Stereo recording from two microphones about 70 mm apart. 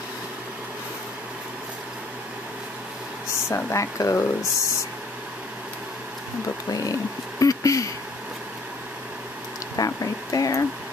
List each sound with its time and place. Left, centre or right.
3.4 s speech: left
6.7 s speech: left
9.8 s a sound: left